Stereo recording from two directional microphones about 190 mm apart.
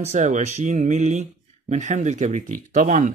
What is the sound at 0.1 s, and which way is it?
Speech, 40° right (ahead or behind).